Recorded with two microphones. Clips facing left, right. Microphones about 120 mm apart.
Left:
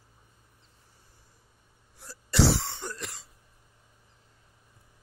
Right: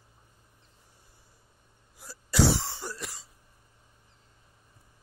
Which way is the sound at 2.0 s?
10° right (ahead or behind).